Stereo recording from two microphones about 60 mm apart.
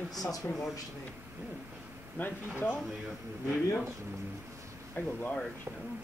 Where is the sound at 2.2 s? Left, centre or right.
Left.